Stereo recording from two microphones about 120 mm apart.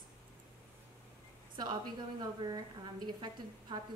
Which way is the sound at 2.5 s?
35° right (ahead or behind).